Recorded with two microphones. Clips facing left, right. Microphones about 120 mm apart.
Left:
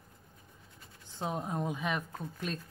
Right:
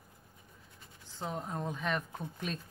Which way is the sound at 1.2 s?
20° left (ahead or behind).